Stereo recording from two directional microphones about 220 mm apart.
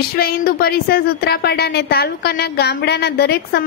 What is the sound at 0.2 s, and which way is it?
A woman's voice, 40° left (ahead or behind).